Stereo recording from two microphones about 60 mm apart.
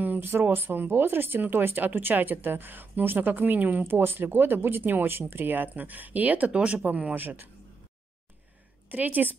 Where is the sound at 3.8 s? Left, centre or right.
Right.